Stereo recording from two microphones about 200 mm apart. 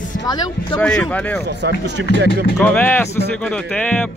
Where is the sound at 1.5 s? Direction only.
60° right (ahead or behind).